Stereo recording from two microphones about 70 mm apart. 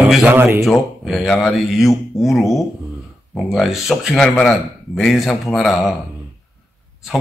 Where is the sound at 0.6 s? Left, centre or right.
Centre.